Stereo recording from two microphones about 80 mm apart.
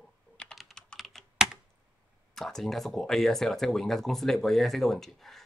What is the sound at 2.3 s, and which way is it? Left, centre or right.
Speech, centre.